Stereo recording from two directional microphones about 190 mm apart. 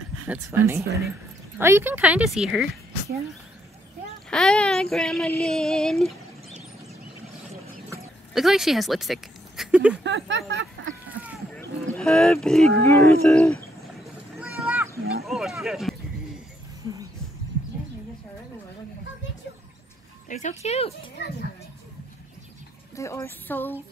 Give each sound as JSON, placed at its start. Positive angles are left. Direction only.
{"t": 0.3, "sound": "speech", "side_deg": -15}
{"t": 4.3, "sound": "speech", "side_deg": 5}
{"t": 8.3, "sound": "speech", "side_deg": 0}
{"t": 10.0, "sound": "speech", "side_deg": -75}
{"t": 11.1, "sound": "a sound", "side_deg": -10}
{"t": 12.0, "sound": "speech", "side_deg": 5}
{"t": 12.8, "sound": "cat", "side_deg": 15}
{"t": 15.2, "sound": "speech", "side_deg": 0}
{"t": 20.2, "sound": "speech", "side_deg": 40}
{"t": 22.9, "sound": "a sound", "side_deg": 15}